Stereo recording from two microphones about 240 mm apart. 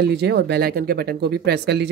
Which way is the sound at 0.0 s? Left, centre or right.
Right.